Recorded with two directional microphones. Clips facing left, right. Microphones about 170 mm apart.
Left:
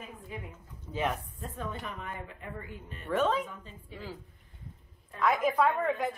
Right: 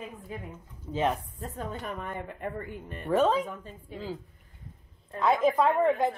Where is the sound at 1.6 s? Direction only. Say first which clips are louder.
Right 3 dB; 45° right (ahead or behind).